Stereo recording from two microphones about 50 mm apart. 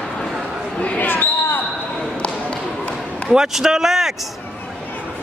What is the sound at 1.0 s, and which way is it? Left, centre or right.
Basketball bounce, left.